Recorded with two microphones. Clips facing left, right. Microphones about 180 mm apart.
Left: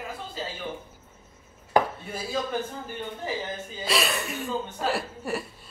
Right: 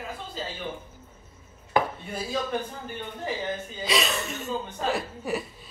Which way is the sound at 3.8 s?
5° left (ahead or behind).